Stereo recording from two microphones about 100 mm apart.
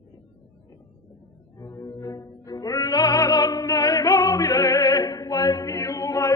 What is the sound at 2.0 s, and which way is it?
Music, 35° left (ahead or behind).